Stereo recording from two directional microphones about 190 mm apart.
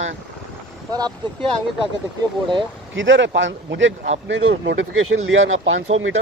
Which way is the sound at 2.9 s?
80° right.